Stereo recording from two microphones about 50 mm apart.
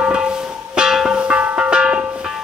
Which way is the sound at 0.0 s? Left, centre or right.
Centre.